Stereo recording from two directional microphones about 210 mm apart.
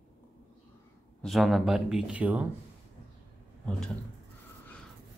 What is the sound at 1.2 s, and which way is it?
Speech, centre (ahead or behind).